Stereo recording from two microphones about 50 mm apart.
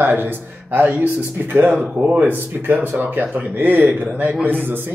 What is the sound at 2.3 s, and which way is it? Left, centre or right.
Speech, right.